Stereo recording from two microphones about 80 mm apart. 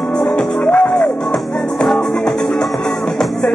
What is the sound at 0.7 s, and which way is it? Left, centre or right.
Music, centre.